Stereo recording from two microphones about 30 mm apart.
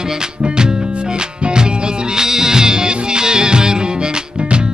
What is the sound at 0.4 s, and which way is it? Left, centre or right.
Music, right.